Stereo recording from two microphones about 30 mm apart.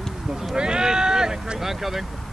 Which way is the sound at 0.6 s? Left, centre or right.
Right.